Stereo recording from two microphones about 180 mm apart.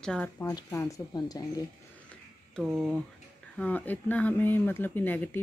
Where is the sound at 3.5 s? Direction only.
10° left (ahead or behind).